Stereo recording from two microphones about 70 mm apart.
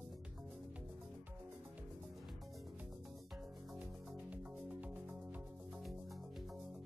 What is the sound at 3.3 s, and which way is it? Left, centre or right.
Music, centre.